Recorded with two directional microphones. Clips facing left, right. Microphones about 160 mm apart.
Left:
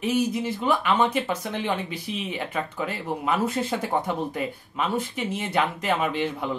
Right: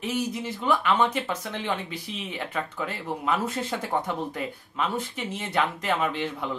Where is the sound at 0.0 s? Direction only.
10° left (ahead or behind).